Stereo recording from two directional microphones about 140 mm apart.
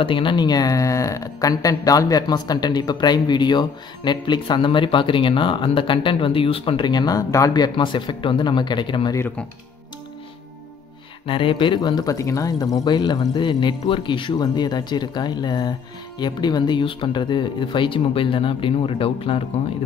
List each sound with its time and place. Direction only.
0.0 s speech: 35° left (ahead or behind)
11.2 s speech: 40° left (ahead or behind)